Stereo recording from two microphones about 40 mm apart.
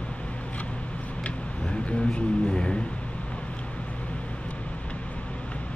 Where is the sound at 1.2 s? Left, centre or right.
Left.